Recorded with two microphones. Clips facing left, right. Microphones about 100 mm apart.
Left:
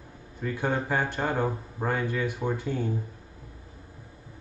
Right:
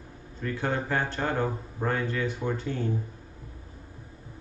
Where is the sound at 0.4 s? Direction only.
15° left (ahead or behind).